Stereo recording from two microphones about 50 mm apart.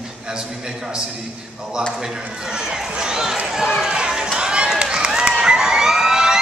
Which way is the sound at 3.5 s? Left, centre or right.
Centre.